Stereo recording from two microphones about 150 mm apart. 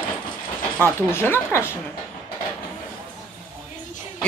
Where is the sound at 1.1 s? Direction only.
15° left (ahead or behind).